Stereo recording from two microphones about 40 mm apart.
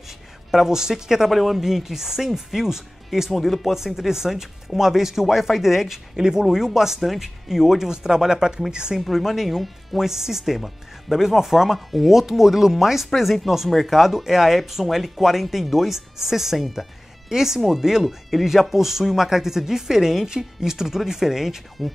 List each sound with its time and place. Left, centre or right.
0.5 s speech: centre
3.7 s speech: centre
9.0 s speech: centre